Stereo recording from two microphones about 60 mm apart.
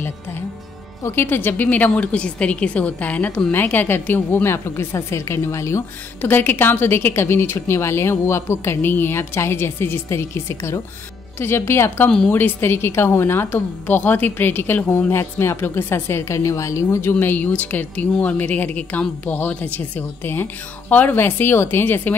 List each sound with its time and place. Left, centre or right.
1.0 s a woman's voice: left
6.2 s a woman's voice: left
12.3 s a woman's voice: left
12.5 s a woman's voice: left
15.0 s a woman's voice: left
17.1 s a woman's voice: left